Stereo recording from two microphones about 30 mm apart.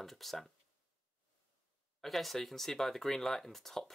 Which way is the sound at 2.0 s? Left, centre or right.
Centre.